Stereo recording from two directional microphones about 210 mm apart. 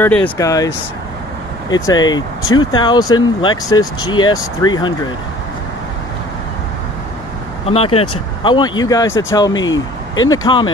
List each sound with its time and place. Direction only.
0.0 s speech: 10° left (ahead or behind)
1.7 s speech: 20° left (ahead or behind)
7.6 s speech: 25° left (ahead or behind)
9.6 s speech: 65° left (ahead or behind)
10.3 s speech: 20° left (ahead or behind)